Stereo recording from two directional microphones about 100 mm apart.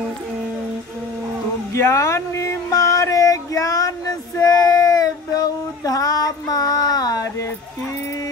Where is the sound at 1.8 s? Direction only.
30° left (ahead or behind).